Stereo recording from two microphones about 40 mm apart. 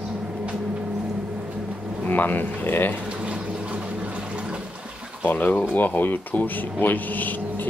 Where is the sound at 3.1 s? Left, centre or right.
Right.